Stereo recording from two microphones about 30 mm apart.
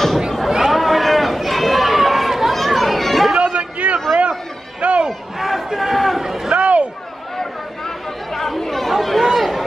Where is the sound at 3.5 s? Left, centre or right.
Right.